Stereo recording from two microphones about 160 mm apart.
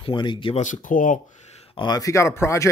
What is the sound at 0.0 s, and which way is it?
Speech, 30° left (ahead or behind).